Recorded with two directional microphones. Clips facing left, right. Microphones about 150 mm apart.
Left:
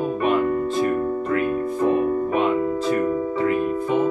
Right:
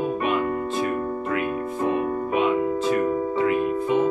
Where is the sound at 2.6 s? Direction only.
25° right (ahead or behind).